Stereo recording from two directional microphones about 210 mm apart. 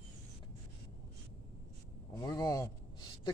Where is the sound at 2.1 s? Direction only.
15° left (ahead or behind).